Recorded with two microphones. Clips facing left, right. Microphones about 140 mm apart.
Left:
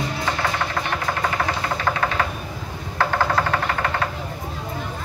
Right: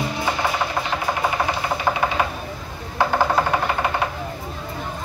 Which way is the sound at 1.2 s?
15° right (ahead or behind).